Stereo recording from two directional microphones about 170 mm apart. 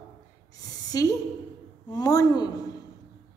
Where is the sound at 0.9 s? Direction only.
20° left (ahead or behind).